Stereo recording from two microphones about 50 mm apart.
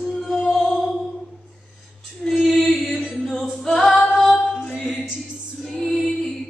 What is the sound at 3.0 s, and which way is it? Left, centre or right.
A capella, centre.